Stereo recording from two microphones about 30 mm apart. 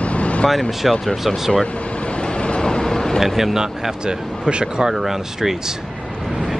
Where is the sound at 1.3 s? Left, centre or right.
Left.